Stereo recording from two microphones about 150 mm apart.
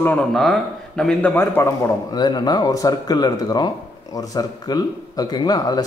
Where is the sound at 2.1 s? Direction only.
25° left (ahead or behind).